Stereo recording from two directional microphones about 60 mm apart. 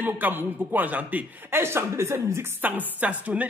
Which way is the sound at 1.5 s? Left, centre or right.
Right.